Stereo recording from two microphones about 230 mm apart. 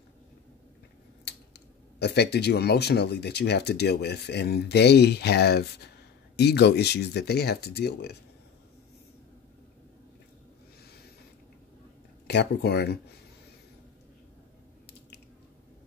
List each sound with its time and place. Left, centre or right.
2.0 s speech: left
12.3 s speech: left